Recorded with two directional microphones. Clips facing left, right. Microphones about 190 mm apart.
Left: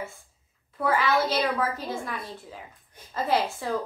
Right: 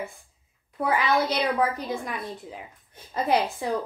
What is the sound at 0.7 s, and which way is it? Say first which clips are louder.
A woman's voice: even; 15° right (ahead or behind).